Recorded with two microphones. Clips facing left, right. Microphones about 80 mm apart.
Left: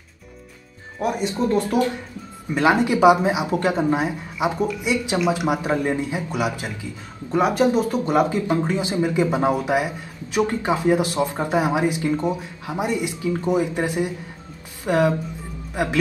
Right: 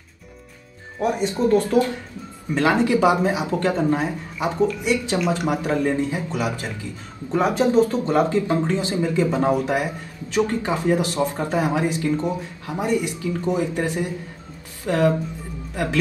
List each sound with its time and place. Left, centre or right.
1.5 s a man's voice: left